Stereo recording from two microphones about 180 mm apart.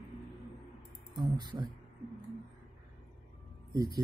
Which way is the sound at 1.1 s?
25° right (ahead or behind).